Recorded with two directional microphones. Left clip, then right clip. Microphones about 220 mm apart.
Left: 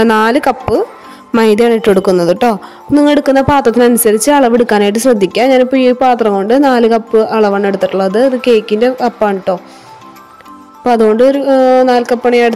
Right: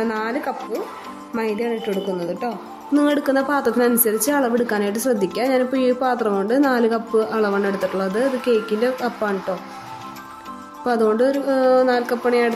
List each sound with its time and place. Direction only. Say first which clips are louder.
0.0 s speech: left 14 dB; 45° left (ahead or behind)
10.8 s speech: left 10 dB; 30° left (ahead or behind)